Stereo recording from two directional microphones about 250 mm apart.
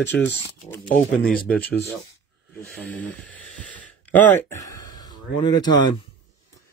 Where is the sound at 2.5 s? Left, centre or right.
Centre.